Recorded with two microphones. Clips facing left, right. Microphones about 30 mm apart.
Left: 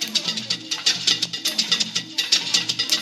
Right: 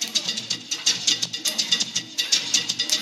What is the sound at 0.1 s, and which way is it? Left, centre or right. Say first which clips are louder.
Music: left 2 dB; left.